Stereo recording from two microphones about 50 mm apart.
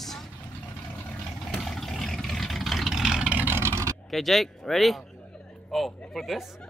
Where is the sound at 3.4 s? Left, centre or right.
Right.